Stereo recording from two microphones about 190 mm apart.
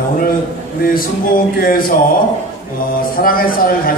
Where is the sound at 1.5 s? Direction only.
50° left (ahead or behind).